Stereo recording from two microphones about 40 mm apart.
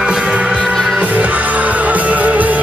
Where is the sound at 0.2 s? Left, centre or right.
Right.